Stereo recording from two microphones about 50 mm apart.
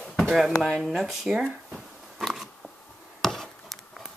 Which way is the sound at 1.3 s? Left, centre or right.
Centre.